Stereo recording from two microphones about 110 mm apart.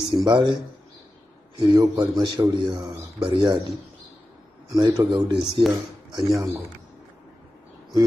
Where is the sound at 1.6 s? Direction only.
40° right (ahead or behind).